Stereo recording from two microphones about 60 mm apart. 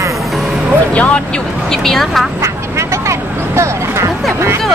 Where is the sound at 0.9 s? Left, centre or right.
Left.